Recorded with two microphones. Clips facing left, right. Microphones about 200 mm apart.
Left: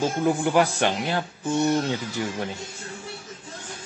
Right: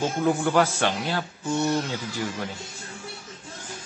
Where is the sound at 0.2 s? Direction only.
15° left (ahead or behind).